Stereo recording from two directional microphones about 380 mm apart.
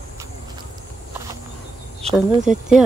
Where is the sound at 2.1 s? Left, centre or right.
Centre.